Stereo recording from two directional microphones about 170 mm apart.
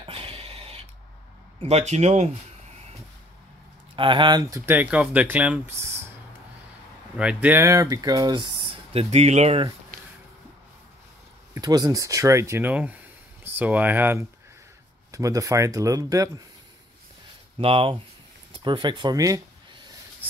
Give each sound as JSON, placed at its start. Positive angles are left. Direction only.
{"t": 0.0, "sound": "a sound", "side_deg": -35}
{"t": 1.6, "sound": "speech", "side_deg": -40}
{"t": 3.9, "sound": "speech", "side_deg": -30}
{"t": 7.2, "sound": "speech", "side_deg": -5}
{"t": 8.9, "sound": "speech", "side_deg": -40}
{"t": 11.5, "sound": "speech", "side_deg": -25}
{"t": 17.6, "sound": "speech", "side_deg": -30}